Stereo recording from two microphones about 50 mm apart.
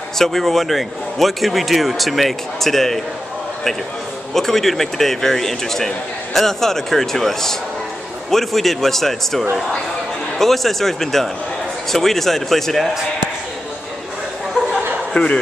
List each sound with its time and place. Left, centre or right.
0.2 s speech: centre
4.3 s speech: centre
15.2 s speech: left